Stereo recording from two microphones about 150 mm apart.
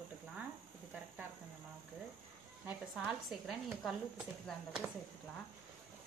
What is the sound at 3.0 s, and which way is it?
A woman's voice, centre (ahead or behind).